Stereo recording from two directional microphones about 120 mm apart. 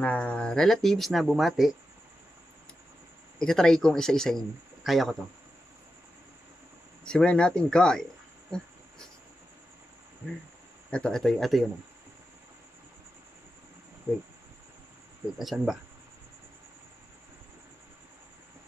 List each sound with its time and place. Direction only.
0.0 s speech: 10° left (ahead or behind)
3.3 s speech: 5° left (ahead or behind)
7.1 s speech: 10° left (ahead or behind)
10.9 s speech: 5° left (ahead or behind)
14.1 s cricket: 15° right (ahead or behind)
15.3 s speech: centre (ahead or behind)